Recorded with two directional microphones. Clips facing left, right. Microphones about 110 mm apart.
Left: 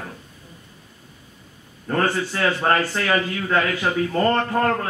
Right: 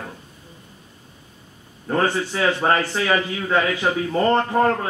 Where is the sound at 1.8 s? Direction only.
15° right (ahead or behind).